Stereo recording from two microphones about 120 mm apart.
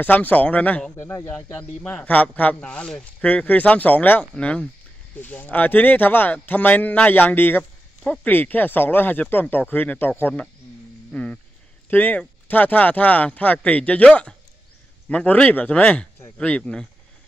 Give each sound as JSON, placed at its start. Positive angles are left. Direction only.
{"t": 0.0, "sound": "speech", "side_deg": 15}
{"t": 11.1, "sound": "a sound", "side_deg": 10}
{"t": 11.9, "sound": "speech", "side_deg": 15}